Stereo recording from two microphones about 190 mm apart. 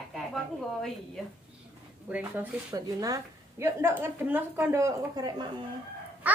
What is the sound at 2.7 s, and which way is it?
A woman's voice, 20° right (ahead or behind).